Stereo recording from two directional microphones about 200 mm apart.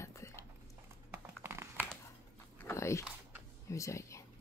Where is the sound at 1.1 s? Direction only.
10° right (ahead or behind).